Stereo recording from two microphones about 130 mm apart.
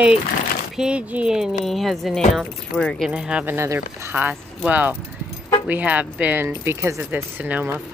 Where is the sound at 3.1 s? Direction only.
10° right (ahead or behind).